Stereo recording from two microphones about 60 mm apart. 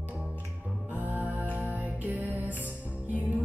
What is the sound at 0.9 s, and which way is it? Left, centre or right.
Music, right.